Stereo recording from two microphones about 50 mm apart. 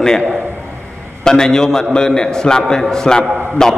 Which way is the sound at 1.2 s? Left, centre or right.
Centre.